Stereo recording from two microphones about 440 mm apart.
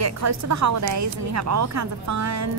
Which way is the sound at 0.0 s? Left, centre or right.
Right.